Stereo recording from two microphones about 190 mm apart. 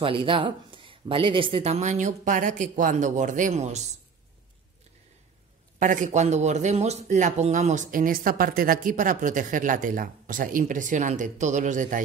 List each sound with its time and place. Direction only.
0.0 s speech: 30° right (ahead or behind)
5.8 s speech: 40° right (ahead or behind)